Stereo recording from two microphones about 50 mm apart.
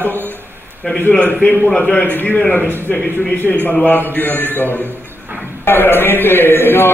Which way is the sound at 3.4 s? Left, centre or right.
Left.